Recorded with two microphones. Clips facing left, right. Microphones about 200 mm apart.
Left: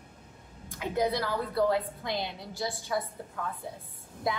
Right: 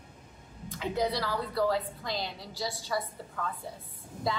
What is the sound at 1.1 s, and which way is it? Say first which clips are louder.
A woman's voice: left 2 dB; 20° left (ahead or behind).